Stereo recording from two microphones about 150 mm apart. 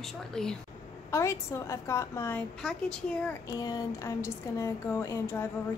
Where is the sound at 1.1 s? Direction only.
20° left (ahead or behind).